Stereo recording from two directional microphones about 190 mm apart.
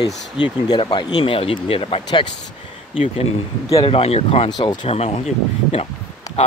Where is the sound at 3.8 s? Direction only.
30° left (ahead or behind).